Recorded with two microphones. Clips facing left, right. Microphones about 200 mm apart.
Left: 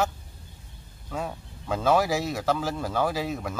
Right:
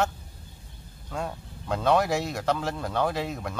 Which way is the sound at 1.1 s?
5° left (ahead or behind).